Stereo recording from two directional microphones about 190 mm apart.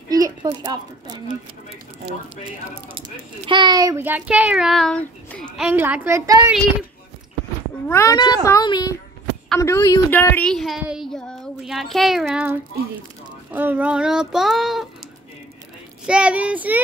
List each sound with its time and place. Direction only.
0.1 s a woman's voice: 20° right (ahead or behind)
2.9 s speech: 25° right (ahead or behind); by 5.7 s 5° left (ahead or behind)
5.7 s speech: 10° right (ahead or behind)
7.9 s a child's voice: 15° left (ahead or behind); by 14.9 s centre (ahead or behind)
16.1 s speech: 5° right (ahead or behind)